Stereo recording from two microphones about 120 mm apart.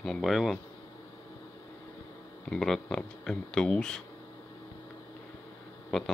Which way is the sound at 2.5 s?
5° left (ahead or behind).